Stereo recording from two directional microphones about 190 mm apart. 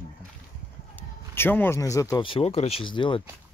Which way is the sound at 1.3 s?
10° left (ahead or behind).